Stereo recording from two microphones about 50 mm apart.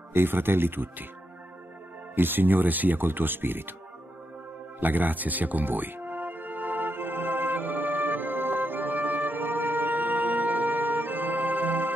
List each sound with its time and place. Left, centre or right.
0.1 s speech: right
2.1 s speech: right
4.7 s music: right